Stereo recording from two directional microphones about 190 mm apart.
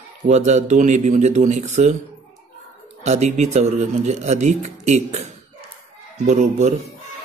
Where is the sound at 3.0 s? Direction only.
35° right (ahead or behind).